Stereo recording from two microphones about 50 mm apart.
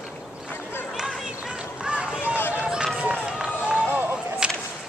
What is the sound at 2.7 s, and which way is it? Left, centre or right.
Run, centre.